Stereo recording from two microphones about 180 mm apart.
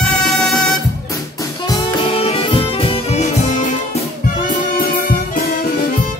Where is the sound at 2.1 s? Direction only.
30° left (ahead or behind).